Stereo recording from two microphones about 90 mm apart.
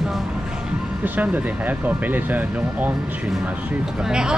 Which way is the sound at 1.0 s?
20° right (ahead or behind).